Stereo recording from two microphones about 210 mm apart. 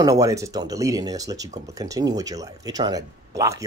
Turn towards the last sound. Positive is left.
turn(degrees=-15)  # may be behind; listen again after turning